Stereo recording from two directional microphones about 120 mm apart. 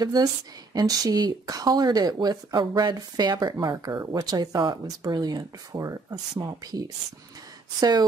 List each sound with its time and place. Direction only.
0.0 s speech: 35° right (ahead or behind)